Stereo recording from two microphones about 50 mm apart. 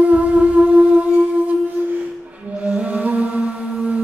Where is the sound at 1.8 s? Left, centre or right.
Right.